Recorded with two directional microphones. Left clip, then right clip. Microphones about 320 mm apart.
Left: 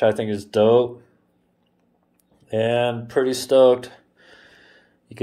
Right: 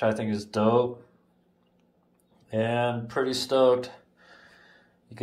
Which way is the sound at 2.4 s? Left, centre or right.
Centre.